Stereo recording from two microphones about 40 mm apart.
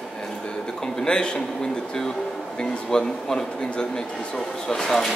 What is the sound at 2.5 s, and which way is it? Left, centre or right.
A man's voice, centre.